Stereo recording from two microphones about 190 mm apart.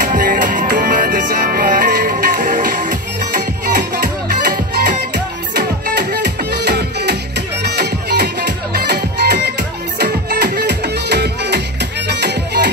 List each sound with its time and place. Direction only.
0.0 s music: 45° right (ahead or behind); by 12.6 s 60° right (ahead or behind)